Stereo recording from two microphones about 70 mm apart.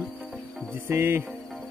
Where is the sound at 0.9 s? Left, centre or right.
Right.